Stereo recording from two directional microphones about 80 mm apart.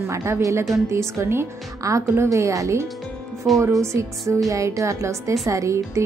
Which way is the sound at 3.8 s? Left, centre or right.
Right.